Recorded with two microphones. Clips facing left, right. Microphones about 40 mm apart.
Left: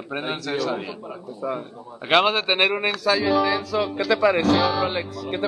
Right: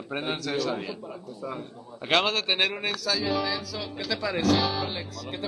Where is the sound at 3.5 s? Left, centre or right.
Left.